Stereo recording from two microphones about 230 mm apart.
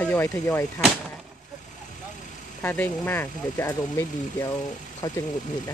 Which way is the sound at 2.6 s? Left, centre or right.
Centre.